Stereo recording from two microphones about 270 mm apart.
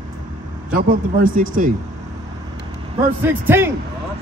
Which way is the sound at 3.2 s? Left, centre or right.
Centre.